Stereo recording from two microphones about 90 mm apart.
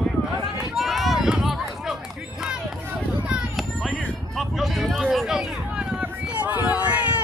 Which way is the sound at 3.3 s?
5° right (ahead or behind).